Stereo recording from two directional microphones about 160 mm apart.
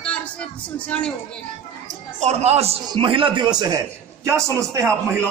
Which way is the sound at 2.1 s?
45° right (ahead or behind).